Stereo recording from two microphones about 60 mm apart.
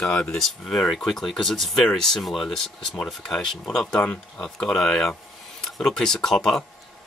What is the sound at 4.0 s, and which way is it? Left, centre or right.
Cutlery, centre.